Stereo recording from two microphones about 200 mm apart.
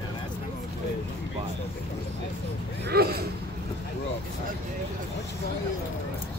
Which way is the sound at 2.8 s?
50° right (ahead or behind).